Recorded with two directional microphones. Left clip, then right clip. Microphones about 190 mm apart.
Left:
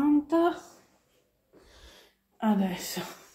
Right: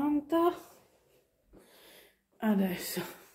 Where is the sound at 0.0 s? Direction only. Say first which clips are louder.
Left 4 dB; 10° right (ahead or behind).